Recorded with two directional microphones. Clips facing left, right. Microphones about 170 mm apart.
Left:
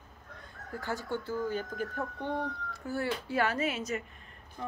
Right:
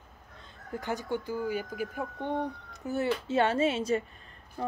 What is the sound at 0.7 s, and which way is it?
Speech, 20° right (ahead or behind).